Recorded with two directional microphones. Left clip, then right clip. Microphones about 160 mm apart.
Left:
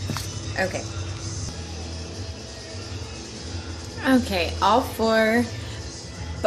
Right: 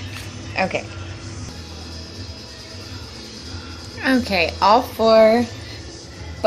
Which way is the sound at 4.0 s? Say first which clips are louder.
Right 3 dB; 25° right (ahead or behind).